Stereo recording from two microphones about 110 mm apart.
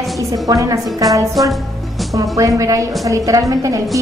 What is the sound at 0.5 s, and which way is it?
Speech, 30° right (ahead or behind).